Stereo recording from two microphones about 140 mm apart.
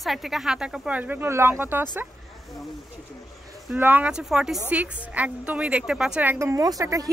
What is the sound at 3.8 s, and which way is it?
Speech, 15° right (ahead or behind).